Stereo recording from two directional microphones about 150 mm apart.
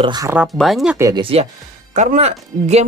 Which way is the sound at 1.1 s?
40° right (ahead or behind).